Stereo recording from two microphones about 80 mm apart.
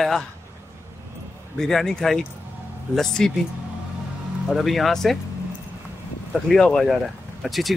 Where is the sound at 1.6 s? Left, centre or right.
Centre.